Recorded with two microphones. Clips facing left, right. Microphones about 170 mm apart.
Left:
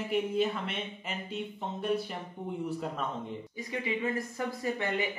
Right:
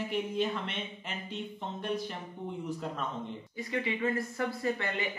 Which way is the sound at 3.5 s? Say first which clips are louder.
Right 1 dB; 15° left (ahead or behind).